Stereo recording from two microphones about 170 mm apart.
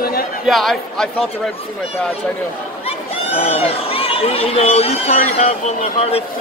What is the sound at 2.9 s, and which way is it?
Speech, 35° left (ahead or behind).